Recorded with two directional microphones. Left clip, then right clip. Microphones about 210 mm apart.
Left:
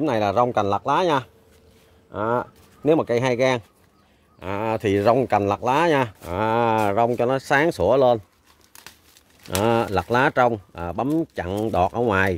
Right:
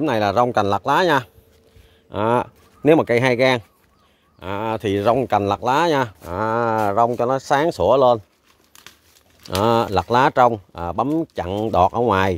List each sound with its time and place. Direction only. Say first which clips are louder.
0.0 s speech: right 2 dB; 20° right (ahead or behind)
2.0 s speech: right 4 dB; 40° right (ahead or behind); by 3.6 s 20° right (ahead or behind)
4.4 s speech: right 1 dB; 10° right (ahead or behind)
9.4 s speech: right 3 dB; 10° right (ahead or behind)